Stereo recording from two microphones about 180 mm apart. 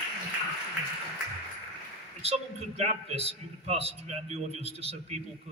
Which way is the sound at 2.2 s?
35° right (ahead or behind).